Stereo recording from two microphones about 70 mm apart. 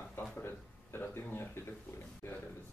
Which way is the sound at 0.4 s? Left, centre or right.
Left.